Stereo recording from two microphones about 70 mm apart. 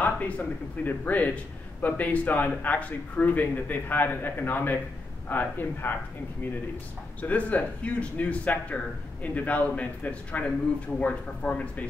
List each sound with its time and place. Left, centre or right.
0.0 s a man's voice: left
7.2 s a man's voice: left